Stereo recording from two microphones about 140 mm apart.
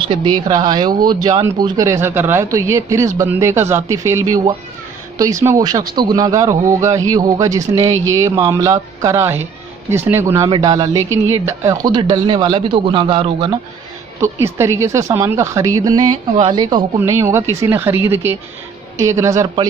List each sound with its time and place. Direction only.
0.1 s speech: 30° right (ahead or behind)
1.8 s speech: 20° right (ahead or behind); by 13.6 s 35° right (ahead or behind)
14.2 s speech: 20° right (ahead or behind)
17.0 s speech: 20° right (ahead or behind)